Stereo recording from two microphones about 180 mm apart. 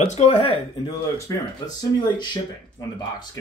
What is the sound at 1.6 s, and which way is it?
Speech, 25° left (ahead or behind).